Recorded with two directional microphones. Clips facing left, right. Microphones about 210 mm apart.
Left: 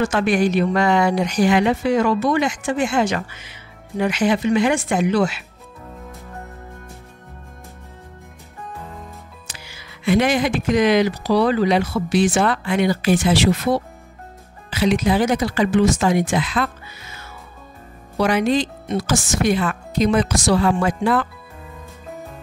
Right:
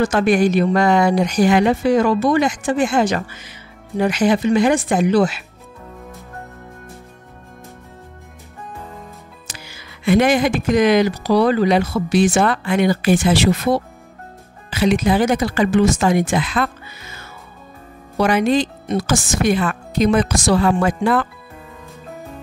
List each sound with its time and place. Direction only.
0.0 s a woman's voice: 40° right (ahead or behind)
9.5 s speech: 45° right (ahead or behind)
14.7 s speech: 50° right (ahead or behind)
18.2 s speech: 55° right (ahead or behind)